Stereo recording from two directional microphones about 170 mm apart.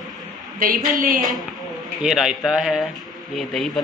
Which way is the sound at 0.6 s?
55° right (ahead or behind).